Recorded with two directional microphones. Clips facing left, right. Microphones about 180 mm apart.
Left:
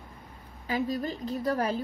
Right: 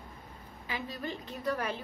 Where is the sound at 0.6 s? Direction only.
40° left (ahead or behind).